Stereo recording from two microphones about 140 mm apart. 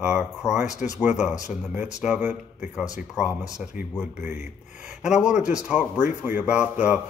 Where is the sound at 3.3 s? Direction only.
25° left (ahead or behind).